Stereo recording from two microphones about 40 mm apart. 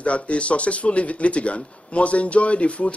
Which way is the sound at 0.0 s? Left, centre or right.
Left.